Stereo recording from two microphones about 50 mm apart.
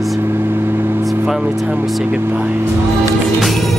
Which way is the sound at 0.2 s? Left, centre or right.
Right.